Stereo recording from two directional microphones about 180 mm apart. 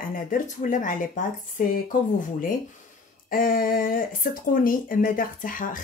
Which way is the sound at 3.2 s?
50° left (ahead or behind).